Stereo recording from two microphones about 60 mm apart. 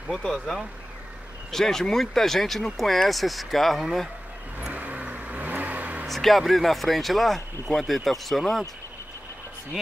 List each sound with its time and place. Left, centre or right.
0.3 s speech: centre
4.7 s vehicle: right
6.0 s speech: centre